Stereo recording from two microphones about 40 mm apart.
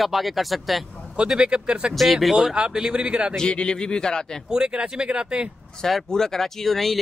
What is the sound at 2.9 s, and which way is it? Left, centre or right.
Speech, right.